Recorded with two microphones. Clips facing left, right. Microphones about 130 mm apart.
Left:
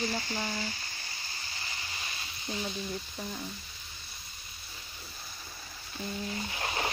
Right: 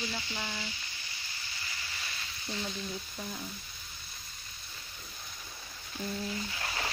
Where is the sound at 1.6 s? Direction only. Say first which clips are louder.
Left 1 dB; 30° left (ahead or behind).